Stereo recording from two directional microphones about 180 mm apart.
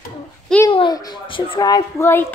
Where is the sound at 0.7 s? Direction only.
25° left (ahead or behind).